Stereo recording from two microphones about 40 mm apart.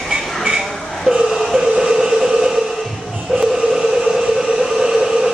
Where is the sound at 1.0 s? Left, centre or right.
Centre.